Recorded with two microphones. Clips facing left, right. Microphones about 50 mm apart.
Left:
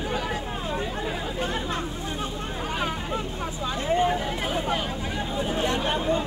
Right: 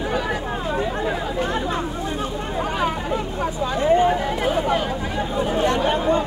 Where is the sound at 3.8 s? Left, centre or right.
Right.